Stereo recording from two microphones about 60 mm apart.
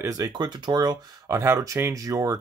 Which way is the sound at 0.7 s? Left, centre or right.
Right.